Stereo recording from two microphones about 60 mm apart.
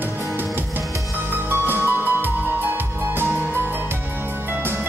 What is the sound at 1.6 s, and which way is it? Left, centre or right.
Music, right.